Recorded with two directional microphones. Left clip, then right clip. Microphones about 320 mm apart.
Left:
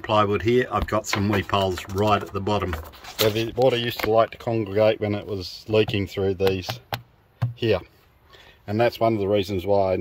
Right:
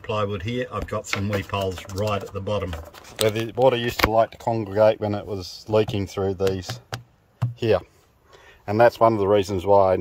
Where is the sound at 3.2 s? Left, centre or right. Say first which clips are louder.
Even; centre.